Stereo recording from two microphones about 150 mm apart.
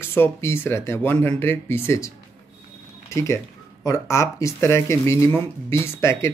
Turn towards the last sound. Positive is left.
turn(degrees=15)  # may be behind; listen again after turning